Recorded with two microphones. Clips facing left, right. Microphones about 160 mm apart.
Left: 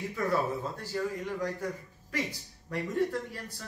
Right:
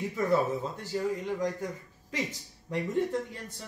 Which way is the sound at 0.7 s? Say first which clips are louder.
Right 2 dB; 20° right (ahead or behind).